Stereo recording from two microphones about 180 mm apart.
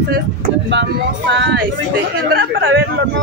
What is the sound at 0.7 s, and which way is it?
Speech, 80° right.